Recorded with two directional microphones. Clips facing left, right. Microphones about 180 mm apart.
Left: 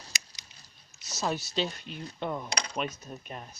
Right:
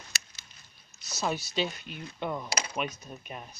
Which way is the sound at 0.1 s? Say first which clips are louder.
Even; 15° left (ahead or behind).